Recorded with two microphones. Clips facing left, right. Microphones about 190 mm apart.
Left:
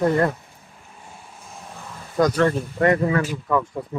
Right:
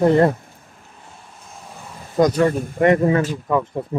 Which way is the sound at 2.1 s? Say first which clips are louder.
Right 3 dB; 15° right (ahead or behind).